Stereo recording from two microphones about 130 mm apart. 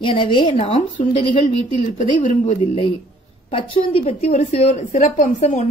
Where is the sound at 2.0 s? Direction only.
65° left (ahead or behind).